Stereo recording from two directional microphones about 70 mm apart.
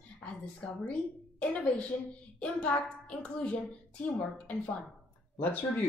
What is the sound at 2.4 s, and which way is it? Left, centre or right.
A woman's voice, centre.